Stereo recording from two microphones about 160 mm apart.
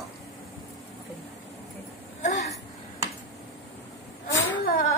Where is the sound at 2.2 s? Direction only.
50° left (ahead or behind).